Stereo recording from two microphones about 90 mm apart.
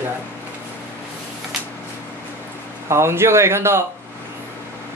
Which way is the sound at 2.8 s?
30° right (ahead or behind).